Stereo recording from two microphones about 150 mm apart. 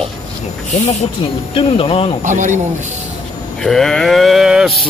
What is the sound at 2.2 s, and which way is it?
Speech, 55° right (ahead or behind).